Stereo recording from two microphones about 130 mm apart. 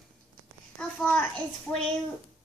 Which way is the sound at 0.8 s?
10° left (ahead or behind).